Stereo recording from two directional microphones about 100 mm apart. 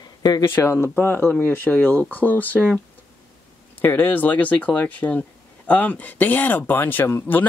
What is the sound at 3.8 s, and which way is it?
Speech, 20° left (ahead or behind).